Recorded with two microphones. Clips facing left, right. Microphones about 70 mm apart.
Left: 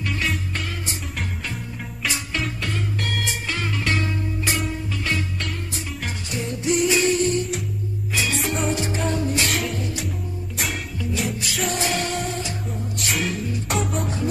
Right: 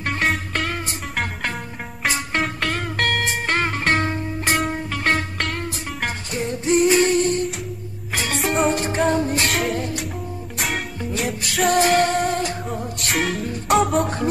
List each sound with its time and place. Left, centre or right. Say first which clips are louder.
0.0 s music: right 4 dB; right
2.0 s music: right 5 dB; right
4.6 s music: right 4 dB; right
9.5 s music: right 3 dB; right